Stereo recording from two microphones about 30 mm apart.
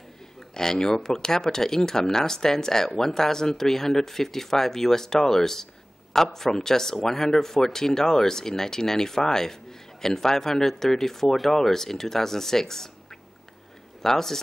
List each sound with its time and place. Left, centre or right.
0.6 s speech: left